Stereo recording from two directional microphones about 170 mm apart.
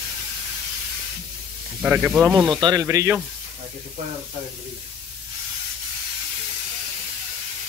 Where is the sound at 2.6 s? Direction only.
20° right (ahead or behind).